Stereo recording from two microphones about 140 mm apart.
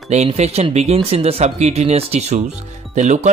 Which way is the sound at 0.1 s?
50° right (ahead or behind).